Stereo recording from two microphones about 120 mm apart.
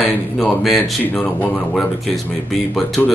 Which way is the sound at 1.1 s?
10° left (ahead or behind).